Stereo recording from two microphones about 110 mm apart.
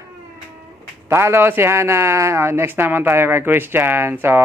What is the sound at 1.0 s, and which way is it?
A man's voice, 25° right (ahead or behind).